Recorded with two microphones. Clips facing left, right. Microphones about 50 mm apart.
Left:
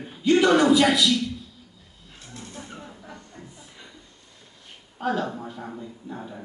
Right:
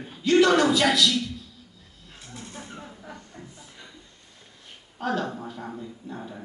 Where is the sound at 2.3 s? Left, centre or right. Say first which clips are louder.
Even; centre.